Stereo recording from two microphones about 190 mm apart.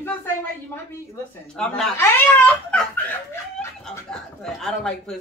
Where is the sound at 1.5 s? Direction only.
5° left (ahead or behind).